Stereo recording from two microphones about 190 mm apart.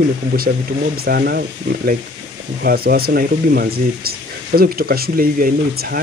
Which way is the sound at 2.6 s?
55° right (ahead or behind).